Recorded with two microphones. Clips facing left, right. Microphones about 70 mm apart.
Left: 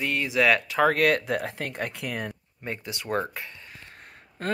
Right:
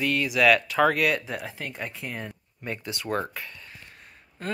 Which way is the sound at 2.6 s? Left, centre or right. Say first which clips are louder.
Right 1 dB; left.